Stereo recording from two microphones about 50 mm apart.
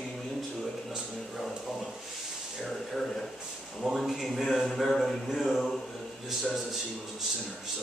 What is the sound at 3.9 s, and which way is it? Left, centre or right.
Speech, centre.